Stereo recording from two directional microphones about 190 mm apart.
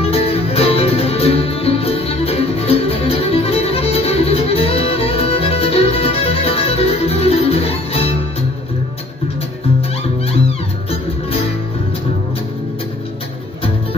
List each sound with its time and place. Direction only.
0.1 s music: 30° left (ahead or behind)